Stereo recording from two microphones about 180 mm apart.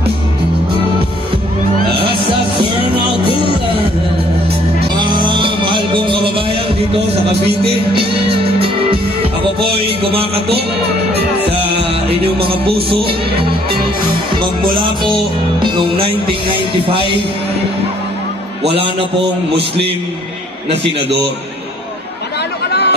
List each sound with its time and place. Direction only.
3.4 s music: 30° right (ahead or behind)
4.9 s music: 25° right (ahead or behind)
7.9 s music: 30° right (ahead or behind)
11.4 s music: 30° right (ahead or behind)
15.6 s music: 25° right (ahead or behind)
16.4 s speech: 25° left (ahead or behind)
18.6 s music: 30° right (ahead or behind)
22.7 s a sound: 65° left (ahead or behind)